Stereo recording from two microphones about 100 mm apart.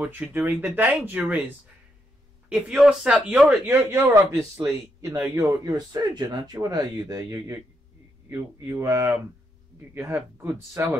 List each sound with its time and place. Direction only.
0.0 s speech: 15° right (ahead or behind)
2.5 s speech: 5° right (ahead or behind)
3.9 s speech: 25° right (ahead or behind)
5.7 s speech: 45° right (ahead or behind); by 11.0 s 25° right (ahead or behind)